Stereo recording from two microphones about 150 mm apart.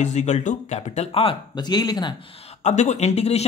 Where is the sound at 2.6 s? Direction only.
50° left (ahead or behind).